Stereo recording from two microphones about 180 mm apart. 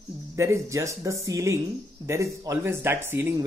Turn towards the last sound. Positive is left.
turn(degrees=-15)  # may be behind; listen again after turning